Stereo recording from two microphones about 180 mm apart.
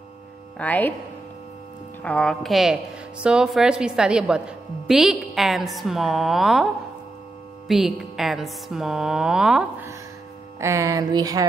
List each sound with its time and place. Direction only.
0.6 s speech: 10° left (ahead or behind)
2.0 s a woman's voice: 5° left (ahead or behind)
10.6 s speech: 15° right (ahead or behind)